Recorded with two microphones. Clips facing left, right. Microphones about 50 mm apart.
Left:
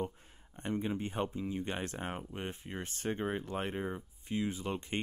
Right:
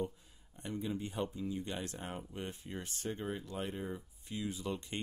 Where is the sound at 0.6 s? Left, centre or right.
Left.